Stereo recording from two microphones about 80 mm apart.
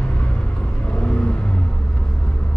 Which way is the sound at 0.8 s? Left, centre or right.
Centre.